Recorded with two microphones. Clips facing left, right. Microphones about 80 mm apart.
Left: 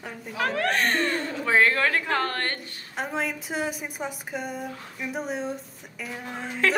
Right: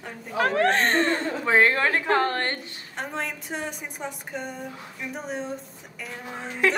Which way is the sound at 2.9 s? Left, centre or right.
Centre.